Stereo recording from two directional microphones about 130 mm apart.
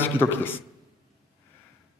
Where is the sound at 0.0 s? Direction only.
15° left (ahead or behind).